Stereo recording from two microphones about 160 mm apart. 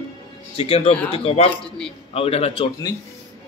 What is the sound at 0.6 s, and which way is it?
A man's voice, 35° left (ahead or behind).